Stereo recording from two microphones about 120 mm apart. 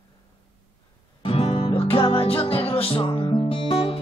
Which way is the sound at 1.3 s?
50° left (ahead or behind).